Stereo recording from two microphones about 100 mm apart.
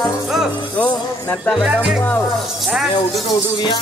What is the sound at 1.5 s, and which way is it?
Speech, 10° right (ahead or behind).